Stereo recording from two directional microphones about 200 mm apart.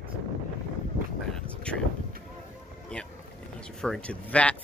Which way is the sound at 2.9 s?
5° left (ahead or behind).